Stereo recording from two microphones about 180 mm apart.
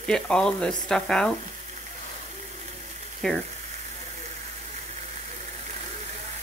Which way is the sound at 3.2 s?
5° left (ahead or behind).